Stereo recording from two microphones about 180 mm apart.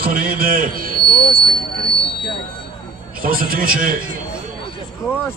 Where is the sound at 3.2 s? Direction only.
55° right (ahead or behind).